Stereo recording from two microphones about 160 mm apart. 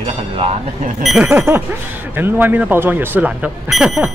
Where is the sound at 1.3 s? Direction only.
15° right (ahead or behind).